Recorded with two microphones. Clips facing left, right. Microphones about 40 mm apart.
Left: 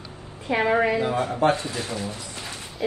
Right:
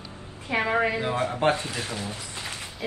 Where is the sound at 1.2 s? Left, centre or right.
Right.